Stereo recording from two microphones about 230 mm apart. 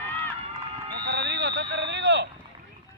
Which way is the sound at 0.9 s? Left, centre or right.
Right.